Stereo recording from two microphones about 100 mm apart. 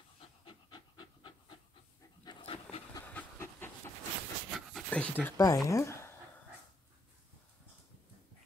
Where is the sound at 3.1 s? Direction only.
20° left (ahead or behind).